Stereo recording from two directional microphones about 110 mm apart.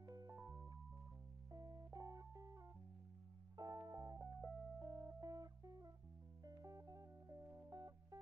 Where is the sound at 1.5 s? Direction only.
30° right (ahead or behind).